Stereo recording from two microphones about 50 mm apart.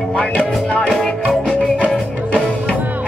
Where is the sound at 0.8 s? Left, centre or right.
Centre.